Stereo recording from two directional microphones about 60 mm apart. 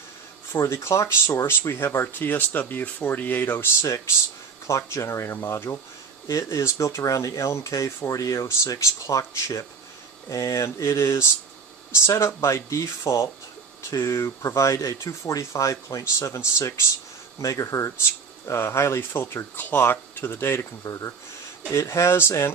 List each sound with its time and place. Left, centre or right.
0.5 s speech: left
4.6 s speech: left
6.2 s speech: left
16.0 s speech: left
17.4 s speech: left
18.4 s speech: left
20.8 s speech: left
21.6 s speech: left